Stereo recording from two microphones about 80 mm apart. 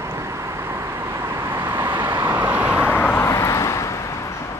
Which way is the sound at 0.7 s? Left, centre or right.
Right.